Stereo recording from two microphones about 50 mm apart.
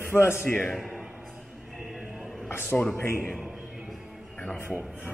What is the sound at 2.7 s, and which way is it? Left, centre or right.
Speech, centre.